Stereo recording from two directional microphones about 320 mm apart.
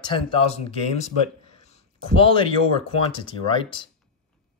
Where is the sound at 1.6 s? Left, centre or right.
Centre.